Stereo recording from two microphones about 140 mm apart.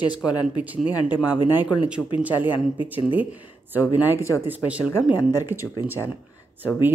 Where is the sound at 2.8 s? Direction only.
10° right (ahead or behind).